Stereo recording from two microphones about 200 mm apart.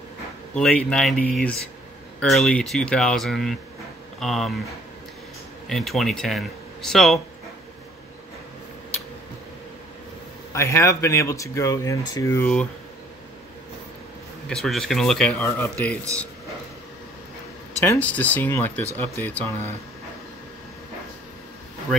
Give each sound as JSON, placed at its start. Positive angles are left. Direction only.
{"t": 0.6, "sound": "a man's voice", "side_deg": 5}
{"t": 5.7, "sound": "a man's voice", "side_deg": 0}
{"t": 10.5, "sound": "speech", "side_deg": 15}
{"t": 14.5, "sound": "a man's voice", "side_deg": 0}
{"t": 17.8, "sound": "speech", "side_deg": 10}